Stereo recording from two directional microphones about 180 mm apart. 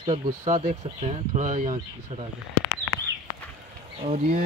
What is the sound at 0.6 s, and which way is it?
Speech, 40° right (ahead or behind).